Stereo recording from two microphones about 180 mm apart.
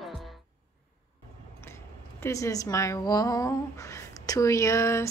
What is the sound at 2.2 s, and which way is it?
Speech, 15° left (ahead or behind).